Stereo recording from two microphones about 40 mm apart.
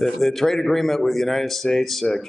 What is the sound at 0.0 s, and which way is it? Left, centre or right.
A man's voice, centre.